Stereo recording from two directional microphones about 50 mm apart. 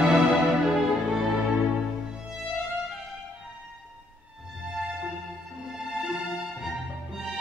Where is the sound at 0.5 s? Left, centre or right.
Centre.